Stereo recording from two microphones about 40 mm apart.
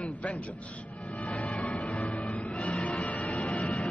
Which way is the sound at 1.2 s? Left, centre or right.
Left.